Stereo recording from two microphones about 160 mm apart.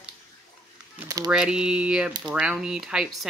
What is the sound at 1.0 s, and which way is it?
Speech, 20° right (ahead or behind).